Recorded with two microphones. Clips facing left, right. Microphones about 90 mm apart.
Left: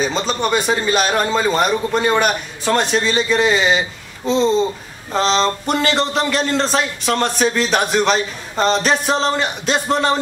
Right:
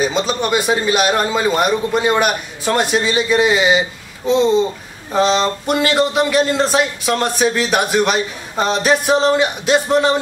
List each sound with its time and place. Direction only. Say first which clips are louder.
0.0 s speech: right 1 dB; 5° right (ahead or behind)